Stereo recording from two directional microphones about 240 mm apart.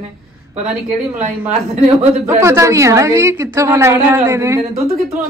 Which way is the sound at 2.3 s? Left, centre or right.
Centre.